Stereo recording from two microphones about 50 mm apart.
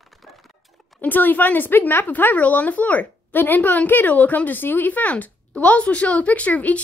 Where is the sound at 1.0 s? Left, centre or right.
Left.